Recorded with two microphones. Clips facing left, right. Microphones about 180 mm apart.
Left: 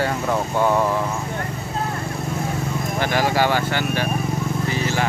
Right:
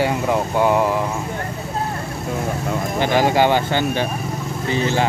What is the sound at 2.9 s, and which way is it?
Speech, 20° right (ahead or behind).